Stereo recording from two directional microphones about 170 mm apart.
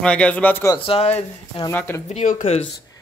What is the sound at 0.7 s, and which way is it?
Speech, 30° left (ahead or behind).